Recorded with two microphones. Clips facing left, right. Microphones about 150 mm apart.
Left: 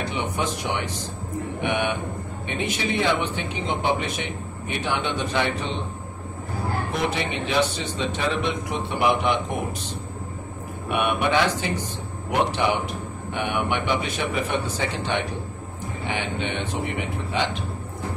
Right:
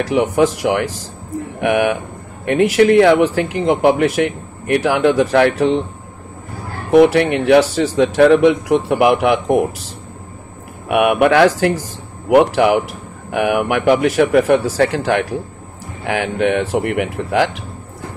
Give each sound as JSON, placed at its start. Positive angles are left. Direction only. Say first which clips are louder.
{"t": 0.0, "sound": "a man's voice", "louder": "right 12 dB", "side_deg": -90}
{"t": 6.9, "sound": "a man's voice", "louder": "right 19 dB", "side_deg": -75}
{"t": 10.9, "sound": "a man's voice", "louder": "right 10 dB", "side_deg": -85}
{"t": 12.3, "sound": "a man's voice", "louder": "right 11 dB", "side_deg": -80}